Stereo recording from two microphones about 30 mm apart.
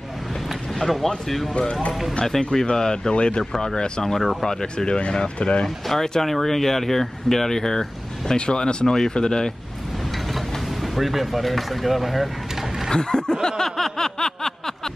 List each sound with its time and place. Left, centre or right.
0.7 s speech: centre; by 4.0 s left
4.0 s speech: centre; by 5.7 s left
5.9 s speech: centre
6.2 s speech: centre
8.4 s speech: left
10.1 s a sound: centre
10.8 s speech: centre
12.9 s a sound: left